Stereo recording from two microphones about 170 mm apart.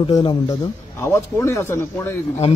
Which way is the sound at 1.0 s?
15° left (ahead or behind).